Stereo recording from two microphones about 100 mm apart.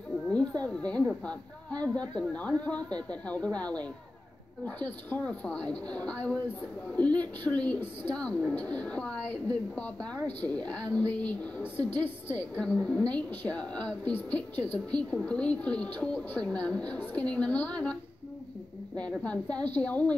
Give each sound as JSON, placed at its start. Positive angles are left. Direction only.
{"t": 0.3, "sound": "a woman's voice", "side_deg": 10}
{"t": 18.9, "sound": "a woman's voice", "side_deg": 10}